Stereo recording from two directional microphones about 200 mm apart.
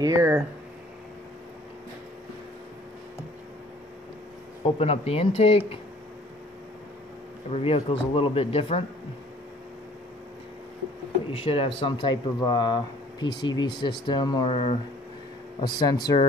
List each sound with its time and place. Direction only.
0.0 s speech: 15° right (ahead or behind)
4.7 s speech: 30° left (ahead or behind)
7.5 s speech: 30° left (ahead or behind)
11.3 s speech: 30° left (ahead or behind)
15.6 s speech: 20° left (ahead or behind)